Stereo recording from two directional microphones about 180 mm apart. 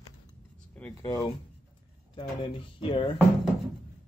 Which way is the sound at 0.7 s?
15° left (ahead or behind).